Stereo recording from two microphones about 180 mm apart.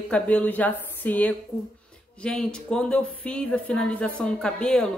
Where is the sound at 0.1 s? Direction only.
10° left (ahead or behind).